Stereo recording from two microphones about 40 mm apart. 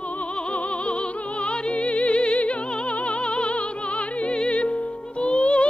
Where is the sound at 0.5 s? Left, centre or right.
Left.